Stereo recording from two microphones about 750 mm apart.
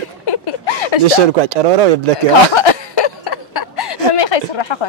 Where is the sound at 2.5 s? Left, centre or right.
Left.